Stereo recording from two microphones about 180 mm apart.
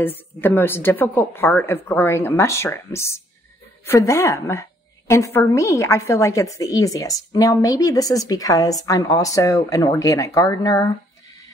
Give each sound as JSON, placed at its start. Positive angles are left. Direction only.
{"t": 0.0, "sound": "a woman's voice", "side_deg": 10}